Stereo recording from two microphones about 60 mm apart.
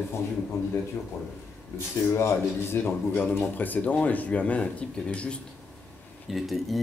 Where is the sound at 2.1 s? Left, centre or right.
Left; by 5.4 s centre.